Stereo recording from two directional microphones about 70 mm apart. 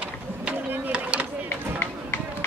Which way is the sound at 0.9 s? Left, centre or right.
Centre.